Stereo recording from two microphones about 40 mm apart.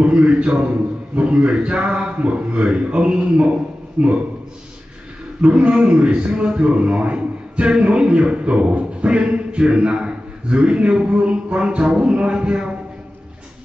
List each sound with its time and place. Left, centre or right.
0.0 s speech: right
5.4 s speech: right